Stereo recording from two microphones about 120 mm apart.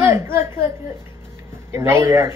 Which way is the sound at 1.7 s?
20° right (ahead or behind).